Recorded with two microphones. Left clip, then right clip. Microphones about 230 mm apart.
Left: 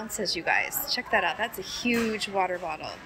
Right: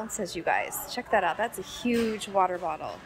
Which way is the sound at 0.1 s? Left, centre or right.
Centre.